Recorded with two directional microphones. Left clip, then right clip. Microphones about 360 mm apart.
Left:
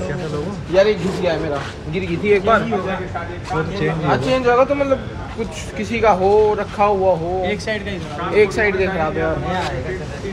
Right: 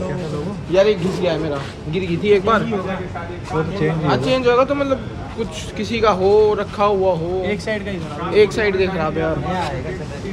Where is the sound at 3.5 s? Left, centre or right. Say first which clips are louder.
Even; right.